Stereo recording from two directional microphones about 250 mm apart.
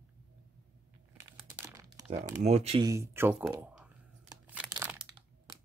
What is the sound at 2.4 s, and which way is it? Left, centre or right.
Speech, right.